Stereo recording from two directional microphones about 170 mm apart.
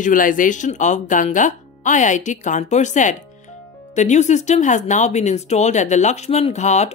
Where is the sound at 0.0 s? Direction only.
50° left (ahead or behind).